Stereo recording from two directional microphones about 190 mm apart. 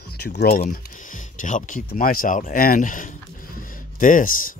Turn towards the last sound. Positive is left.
turn(degrees=45)  # may be behind; listen again after turning